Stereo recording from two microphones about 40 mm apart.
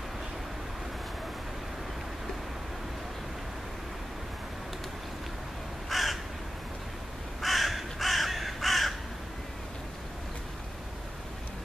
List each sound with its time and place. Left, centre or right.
5.9 s crow: centre
7.4 s crow: centre